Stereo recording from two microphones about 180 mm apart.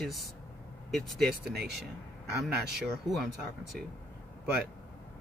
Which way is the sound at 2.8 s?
Centre (ahead or behind).